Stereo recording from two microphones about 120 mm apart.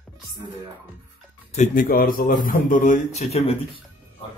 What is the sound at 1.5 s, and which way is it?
Speech, 70° left (ahead or behind).